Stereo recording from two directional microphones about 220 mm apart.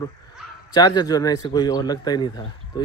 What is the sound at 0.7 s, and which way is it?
A man's voice, 20° left (ahead or behind).